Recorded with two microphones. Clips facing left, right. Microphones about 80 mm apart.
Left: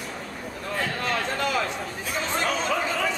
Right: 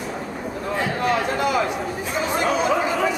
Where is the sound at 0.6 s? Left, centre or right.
Centre.